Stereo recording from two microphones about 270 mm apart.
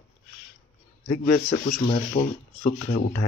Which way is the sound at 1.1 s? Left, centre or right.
Left.